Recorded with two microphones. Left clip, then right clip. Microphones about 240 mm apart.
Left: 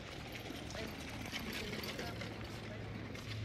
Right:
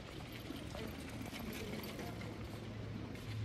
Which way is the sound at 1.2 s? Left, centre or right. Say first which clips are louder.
Left 5 dB; right.